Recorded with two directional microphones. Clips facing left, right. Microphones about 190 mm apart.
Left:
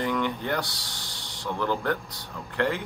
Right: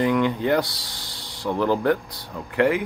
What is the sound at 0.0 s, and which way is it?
Speech, 15° right (ahead or behind).